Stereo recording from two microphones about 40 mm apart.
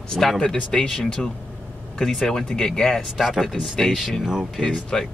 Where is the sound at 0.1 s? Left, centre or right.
Centre.